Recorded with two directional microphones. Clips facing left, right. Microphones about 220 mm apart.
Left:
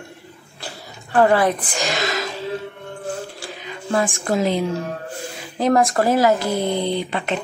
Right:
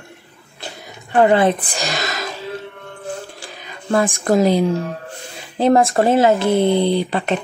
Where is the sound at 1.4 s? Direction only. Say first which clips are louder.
Right 3 dB; 30° right (ahead or behind).